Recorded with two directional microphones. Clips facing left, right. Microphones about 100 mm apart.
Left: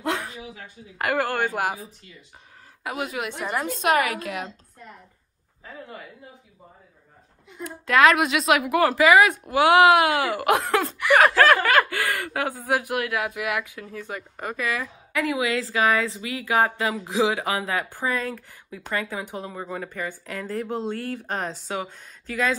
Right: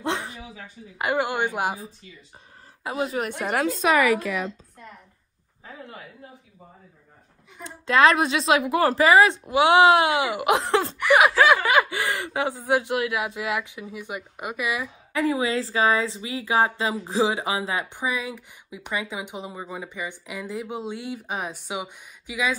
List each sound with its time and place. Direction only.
0.0 s a sound: 25° right (ahead or behind)
0.9 s speech: 20° right (ahead or behind)
2.8 s speech: 30° right (ahead or behind)
7.6 s speech: 25° right (ahead or behind)
11.1 s speech: 15° right (ahead or behind)
11.3 s snicker: 5° right (ahead or behind)
11.6 s speech: 15° right (ahead or behind)
15.1 s a woman's voice: 30° right (ahead or behind); by 22.6 s 10° right (ahead or behind)